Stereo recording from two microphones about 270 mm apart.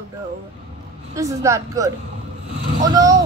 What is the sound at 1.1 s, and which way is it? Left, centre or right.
Speech, centre.